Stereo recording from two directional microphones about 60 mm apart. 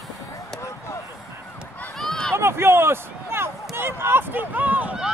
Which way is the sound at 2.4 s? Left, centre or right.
Right.